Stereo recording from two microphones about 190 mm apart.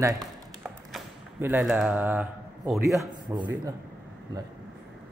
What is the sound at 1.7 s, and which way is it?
Speech, 10° right (ahead or behind).